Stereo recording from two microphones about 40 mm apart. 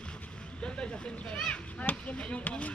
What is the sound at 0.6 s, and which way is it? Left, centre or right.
Vehicle, left.